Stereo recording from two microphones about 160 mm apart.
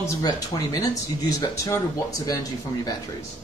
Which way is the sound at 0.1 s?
20° left (ahead or behind).